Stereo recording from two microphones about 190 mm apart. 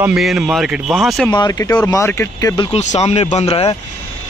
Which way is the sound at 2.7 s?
35° left (ahead or behind).